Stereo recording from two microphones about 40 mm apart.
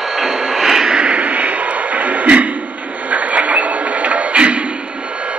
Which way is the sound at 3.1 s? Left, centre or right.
Right.